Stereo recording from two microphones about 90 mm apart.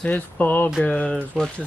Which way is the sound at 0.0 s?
20° left (ahead or behind).